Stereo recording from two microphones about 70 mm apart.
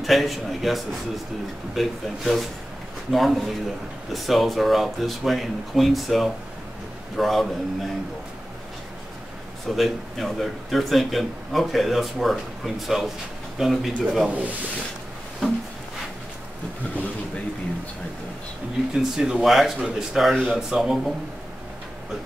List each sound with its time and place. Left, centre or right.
0.0 s speech: centre
9.7 s speech: centre
14.2 s speech: right
18.9 s speech: centre